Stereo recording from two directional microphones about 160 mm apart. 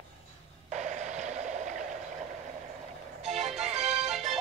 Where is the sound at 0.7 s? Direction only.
50° right (ahead or behind).